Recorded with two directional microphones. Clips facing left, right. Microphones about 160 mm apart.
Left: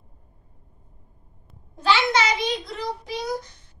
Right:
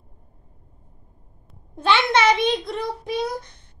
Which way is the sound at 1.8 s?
55° right (ahead or behind).